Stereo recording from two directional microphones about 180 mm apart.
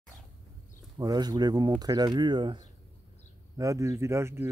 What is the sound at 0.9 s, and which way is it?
Speech, 20° right (ahead or behind).